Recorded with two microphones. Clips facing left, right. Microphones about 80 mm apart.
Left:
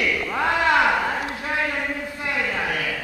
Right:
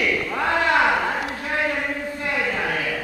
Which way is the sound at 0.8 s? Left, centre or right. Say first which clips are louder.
Even; centre.